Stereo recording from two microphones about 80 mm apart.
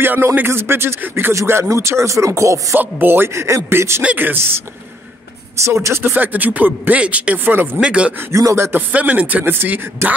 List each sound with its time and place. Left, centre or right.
0.0 s speech: right
1.3 s rapping: right
2.8 s rapping: right
4.0 s speech: centre
7.8 s speech: centre
8.3 s rapping: right
8.9 s speech: centre